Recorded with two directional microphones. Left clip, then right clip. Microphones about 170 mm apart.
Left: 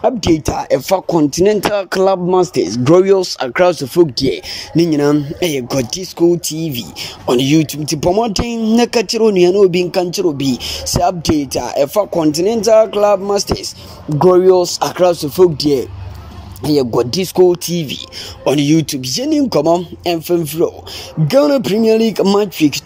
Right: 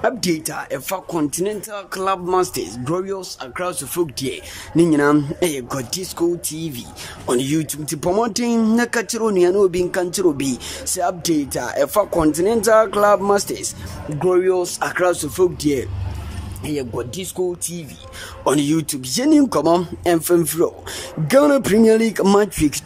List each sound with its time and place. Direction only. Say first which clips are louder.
0.0 s speech: left 6 dB; 15° left (ahead or behind)
1.5 s speech: left 13 dB; 45° left (ahead or behind)
2.3 s speech: left 6 dB; 20° left (ahead or behind)
2.7 s speech: left 14 dB; 35° left (ahead or behind)
3.8 s speech: left 10 dB; 30° left (ahead or behind)
4.7 s speech: left 2 dB; centre (ahead or behind)
16.6 s speech: left 11 dB; 25° left (ahead or behind)
18.4 s speech: left 5 dB; centre (ahead or behind)